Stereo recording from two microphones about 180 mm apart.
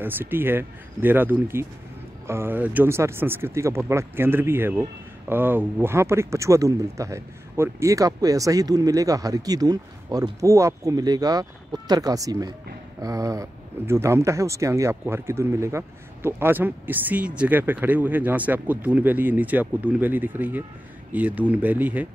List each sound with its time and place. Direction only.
0.0 s speech: 10° right (ahead or behind)